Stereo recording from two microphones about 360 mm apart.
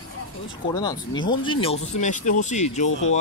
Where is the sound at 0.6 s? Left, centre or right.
Centre.